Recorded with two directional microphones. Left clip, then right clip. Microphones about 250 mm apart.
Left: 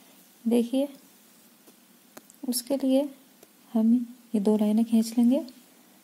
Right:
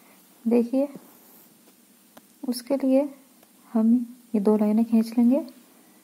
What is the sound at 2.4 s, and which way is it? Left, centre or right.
Speech, left.